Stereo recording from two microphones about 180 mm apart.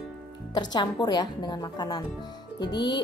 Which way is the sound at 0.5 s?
25° left (ahead or behind).